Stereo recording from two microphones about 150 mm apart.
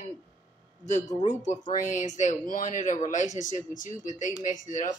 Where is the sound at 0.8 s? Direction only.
60° left (ahead or behind).